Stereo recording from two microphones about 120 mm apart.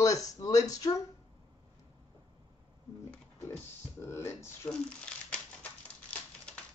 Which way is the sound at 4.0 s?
20° left (ahead or behind).